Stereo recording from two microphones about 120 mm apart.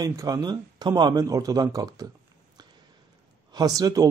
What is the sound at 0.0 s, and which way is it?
Speech, 30° right (ahead or behind).